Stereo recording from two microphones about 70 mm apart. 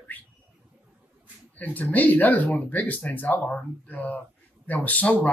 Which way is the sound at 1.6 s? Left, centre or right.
Left.